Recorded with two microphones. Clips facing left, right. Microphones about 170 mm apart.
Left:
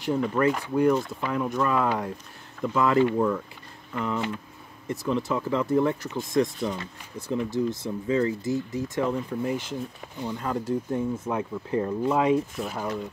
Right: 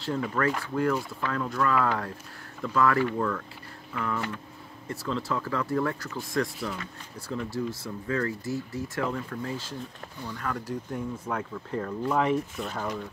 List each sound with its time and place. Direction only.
0.0 s speech: 15° left (ahead or behind)